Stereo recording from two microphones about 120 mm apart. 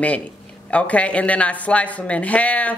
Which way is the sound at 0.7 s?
10° left (ahead or behind).